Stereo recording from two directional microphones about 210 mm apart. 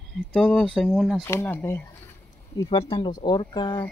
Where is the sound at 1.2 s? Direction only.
10° left (ahead or behind).